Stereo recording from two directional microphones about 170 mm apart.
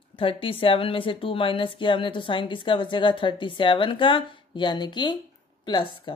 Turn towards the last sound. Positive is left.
turn(degrees=30)  # may be behind; listen again after turning